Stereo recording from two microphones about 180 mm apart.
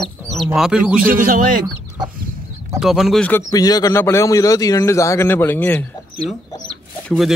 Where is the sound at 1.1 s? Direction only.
50° right (ahead or behind).